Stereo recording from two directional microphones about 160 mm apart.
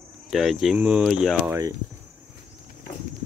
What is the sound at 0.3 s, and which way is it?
Speech, centre (ahead or behind).